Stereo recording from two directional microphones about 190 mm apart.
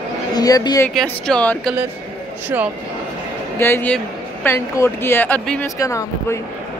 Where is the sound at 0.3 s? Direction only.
20° left (ahead or behind).